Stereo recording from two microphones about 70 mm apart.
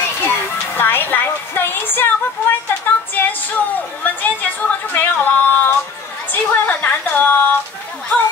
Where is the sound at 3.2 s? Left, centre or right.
Left.